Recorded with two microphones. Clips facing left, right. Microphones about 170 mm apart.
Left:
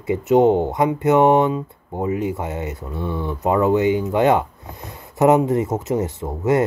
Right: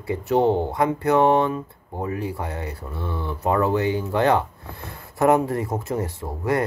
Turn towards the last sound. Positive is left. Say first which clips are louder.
# left 5 dB
turn(degrees=20)  # may be behind; listen again after turning